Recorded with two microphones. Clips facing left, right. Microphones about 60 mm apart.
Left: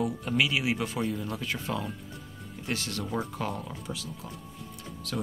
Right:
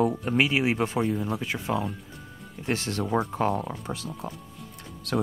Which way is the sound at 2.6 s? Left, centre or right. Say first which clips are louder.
Right 5 dB; right.